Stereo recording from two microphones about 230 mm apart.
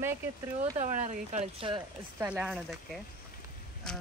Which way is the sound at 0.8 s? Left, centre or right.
Right.